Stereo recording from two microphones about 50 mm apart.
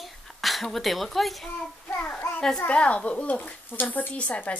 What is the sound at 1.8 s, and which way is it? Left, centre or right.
Child singing, left.